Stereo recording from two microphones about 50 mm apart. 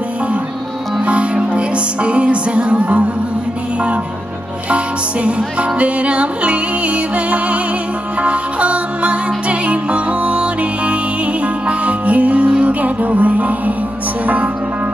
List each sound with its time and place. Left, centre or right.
1.0 s music: right
4.6 s music: right
14.2 s speech: right